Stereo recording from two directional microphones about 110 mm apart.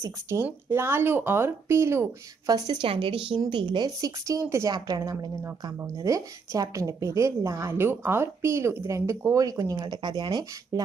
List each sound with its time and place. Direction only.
0.0 s a woman's voice: 25° right (ahead or behind)
2.4 s speech: 35° right (ahead or behind)
2.8 s a woman's voice: 55° right (ahead or behind); by 4.7 s 25° right (ahead or behind)
4.7 s a woman's voice: 40° right (ahead or behind)